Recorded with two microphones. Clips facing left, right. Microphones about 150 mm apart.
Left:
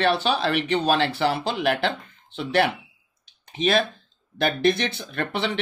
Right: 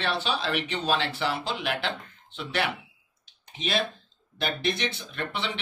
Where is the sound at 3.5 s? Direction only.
60° left (ahead or behind).